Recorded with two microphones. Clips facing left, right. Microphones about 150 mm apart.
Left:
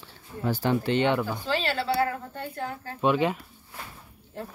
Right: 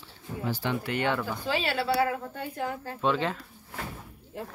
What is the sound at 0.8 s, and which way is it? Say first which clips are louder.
Speech: left 5 dB; 25° left (ahead or behind).